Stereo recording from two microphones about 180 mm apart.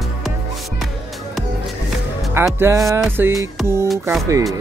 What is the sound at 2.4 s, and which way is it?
Speech, 15° right (ahead or behind).